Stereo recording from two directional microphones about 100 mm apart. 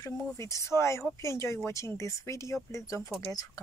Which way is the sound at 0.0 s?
30° left (ahead or behind).